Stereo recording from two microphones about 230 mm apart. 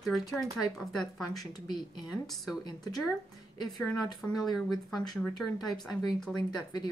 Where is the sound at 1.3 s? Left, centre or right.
Centre.